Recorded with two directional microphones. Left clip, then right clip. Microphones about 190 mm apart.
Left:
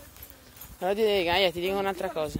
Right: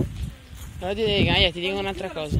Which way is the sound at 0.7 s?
35° left (ahead or behind).